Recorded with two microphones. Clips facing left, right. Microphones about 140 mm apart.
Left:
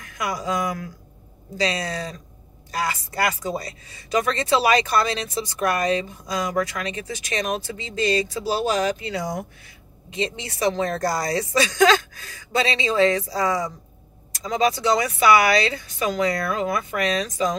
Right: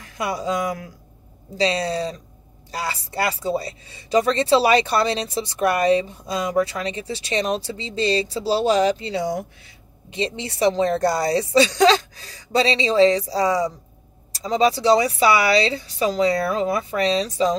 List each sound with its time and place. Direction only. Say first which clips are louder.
0.0 s speech: right 2 dB; 30° right (ahead or behind)